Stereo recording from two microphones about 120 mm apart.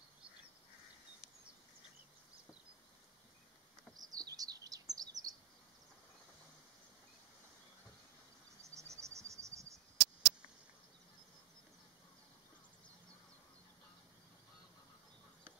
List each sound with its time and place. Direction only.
3.9 s bird: 30° right (ahead or behind)
4.4 s chirp: 30° right (ahead or behind)
8.7 s cricket: 25° right (ahead or behind)